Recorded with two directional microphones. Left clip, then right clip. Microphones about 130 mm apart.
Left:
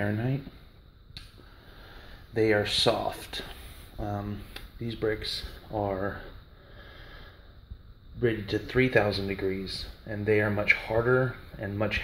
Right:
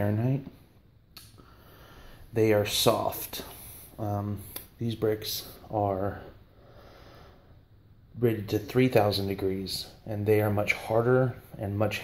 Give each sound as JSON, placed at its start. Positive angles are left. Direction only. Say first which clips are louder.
{"t": 0.0, "sound": "speech", "louder": "right 1 dB", "side_deg": -10}
{"t": 2.3, "sound": "speech", "louder": "even", "side_deg": -10}
{"t": 4.8, "sound": "speech", "louder": "right 2 dB", "side_deg": -20}
{"t": 5.7, "sound": "speech", "louder": "right 2 dB", "side_deg": -5}
{"t": 8.2, "sound": "speech", "louder": "even", "side_deg": -5}